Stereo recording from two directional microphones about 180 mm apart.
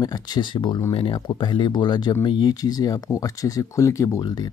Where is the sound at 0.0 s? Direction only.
20° left (ahead or behind).